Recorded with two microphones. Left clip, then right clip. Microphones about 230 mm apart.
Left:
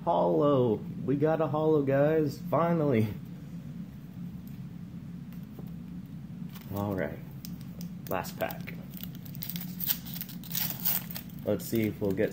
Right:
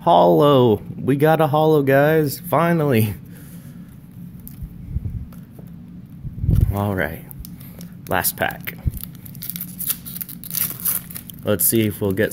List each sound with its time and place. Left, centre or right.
0.0 s speech: right
6.7 s speech: right
8.1 s speech: right
11.4 s speech: right